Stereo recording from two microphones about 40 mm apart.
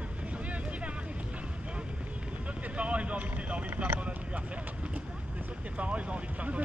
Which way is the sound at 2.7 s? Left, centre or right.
Right.